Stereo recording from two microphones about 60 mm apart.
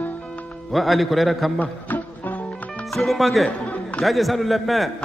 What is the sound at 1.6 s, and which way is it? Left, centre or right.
Music, left.